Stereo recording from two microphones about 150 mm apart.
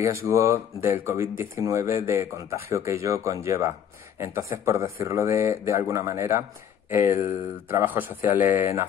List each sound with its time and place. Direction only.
0.0 s speech: 20° right (ahead or behind)